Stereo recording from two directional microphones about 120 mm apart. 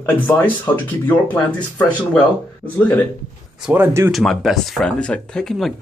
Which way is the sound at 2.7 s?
15° left (ahead or behind).